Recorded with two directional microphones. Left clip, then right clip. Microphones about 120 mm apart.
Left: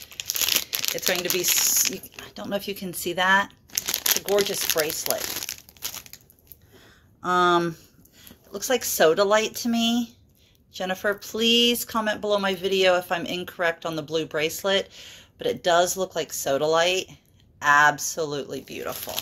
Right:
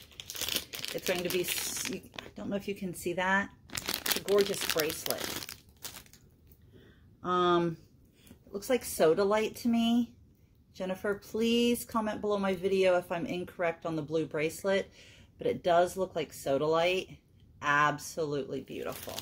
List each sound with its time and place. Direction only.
0.2 s crumpling: centre (ahead or behind)
2.3 s speech: 10° right (ahead or behind)
3.7 s speech: 45° right (ahead or behind)
5.2 s crumpling: 30° right (ahead or behind)
7.2 s speech: centre (ahead or behind)
8.5 s speech: 10° right (ahead or behind)